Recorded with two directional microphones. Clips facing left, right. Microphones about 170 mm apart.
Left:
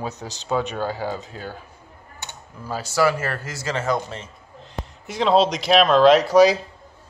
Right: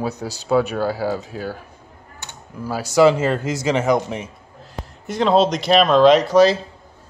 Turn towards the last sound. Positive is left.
turn(degrees=10)  # may be behind; listen again after turning